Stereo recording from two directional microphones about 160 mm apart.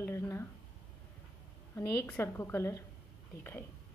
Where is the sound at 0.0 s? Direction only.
15° left (ahead or behind).